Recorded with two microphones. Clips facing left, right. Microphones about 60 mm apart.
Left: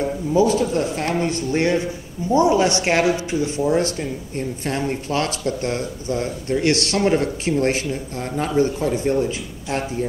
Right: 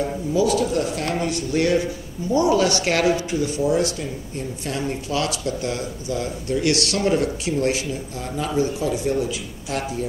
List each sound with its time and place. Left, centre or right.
0.3 s speech: left